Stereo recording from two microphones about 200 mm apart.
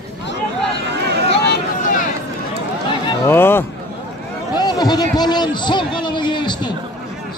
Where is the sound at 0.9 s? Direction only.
55° right (ahead or behind).